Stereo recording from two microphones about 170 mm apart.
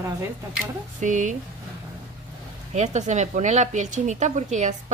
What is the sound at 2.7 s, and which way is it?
Speech, 45° right (ahead or behind).